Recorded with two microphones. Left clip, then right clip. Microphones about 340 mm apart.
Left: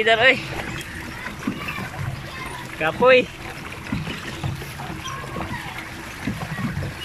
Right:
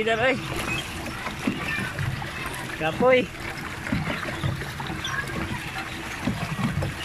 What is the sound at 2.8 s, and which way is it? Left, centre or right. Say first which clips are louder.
Speech: left 5 dB; left.